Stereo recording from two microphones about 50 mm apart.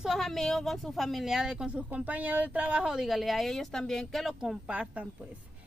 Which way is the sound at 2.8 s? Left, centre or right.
Centre.